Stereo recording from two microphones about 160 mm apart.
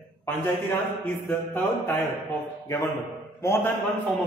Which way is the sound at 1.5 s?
15° left (ahead or behind).